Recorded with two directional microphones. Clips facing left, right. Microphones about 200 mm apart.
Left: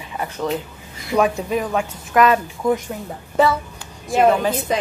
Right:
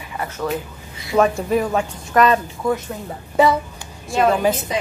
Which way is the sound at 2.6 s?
15° left (ahead or behind).